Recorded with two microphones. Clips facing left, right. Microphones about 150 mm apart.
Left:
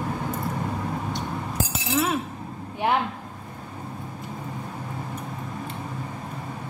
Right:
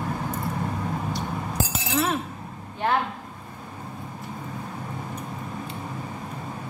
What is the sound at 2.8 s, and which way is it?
Speech, 15° left (ahead or behind).